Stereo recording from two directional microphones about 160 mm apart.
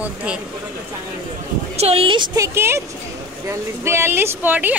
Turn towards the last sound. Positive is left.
turn(degrees=-10)  # may be behind; listen again after turning